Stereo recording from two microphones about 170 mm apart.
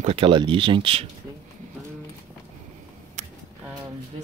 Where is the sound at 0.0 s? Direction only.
35° right (ahead or behind).